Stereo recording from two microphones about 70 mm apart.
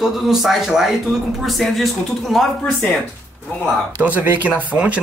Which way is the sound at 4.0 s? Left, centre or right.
Right.